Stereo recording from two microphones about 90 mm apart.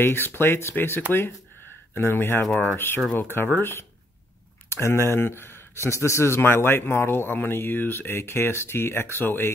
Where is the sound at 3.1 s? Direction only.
25° left (ahead or behind).